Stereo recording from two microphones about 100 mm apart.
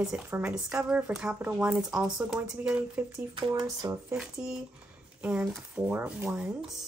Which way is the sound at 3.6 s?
35° right (ahead or behind).